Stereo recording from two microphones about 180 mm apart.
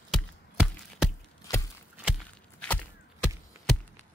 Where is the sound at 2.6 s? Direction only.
5° left (ahead or behind).